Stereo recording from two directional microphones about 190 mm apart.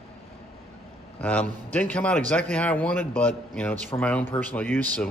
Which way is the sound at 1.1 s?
5° left (ahead or behind).